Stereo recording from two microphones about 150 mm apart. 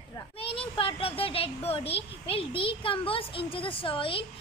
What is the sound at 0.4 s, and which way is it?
A child's voice, 35° left (ahead or behind).